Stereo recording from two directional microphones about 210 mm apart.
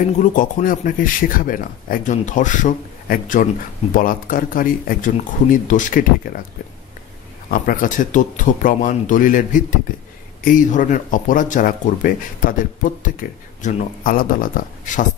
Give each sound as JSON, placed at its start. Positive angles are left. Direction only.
{"t": 0.2, "sound": "speech", "side_deg": 40}
{"t": 7.5, "sound": "speech", "side_deg": 40}
{"t": 13.6, "sound": "speech", "side_deg": 35}